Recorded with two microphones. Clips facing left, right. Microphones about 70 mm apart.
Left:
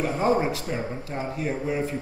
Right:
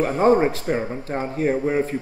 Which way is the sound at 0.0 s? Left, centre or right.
Right.